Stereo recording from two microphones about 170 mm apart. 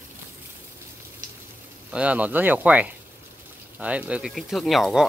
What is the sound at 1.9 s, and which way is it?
Speech, 10° right (ahead or behind).